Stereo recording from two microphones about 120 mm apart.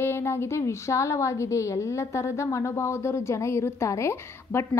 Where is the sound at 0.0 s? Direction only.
20° left (ahead or behind).